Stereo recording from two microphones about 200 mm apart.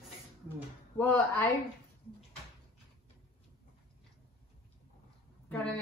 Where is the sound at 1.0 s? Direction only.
10° left (ahead or behind).